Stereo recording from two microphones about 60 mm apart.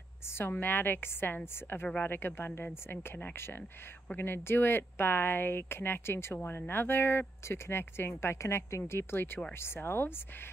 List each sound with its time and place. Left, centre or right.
0.4 s speech: left